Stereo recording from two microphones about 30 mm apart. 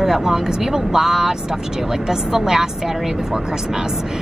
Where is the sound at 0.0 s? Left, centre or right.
Centre.